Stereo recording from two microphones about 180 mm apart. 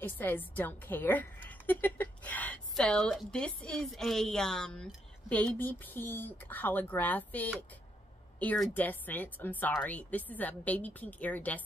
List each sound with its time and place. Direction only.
0.0 s a woman's voice: 10° left (ahead or behind)